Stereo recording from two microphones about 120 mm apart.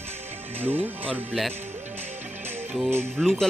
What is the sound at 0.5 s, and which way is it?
Speech, 15° right (ahead or behind).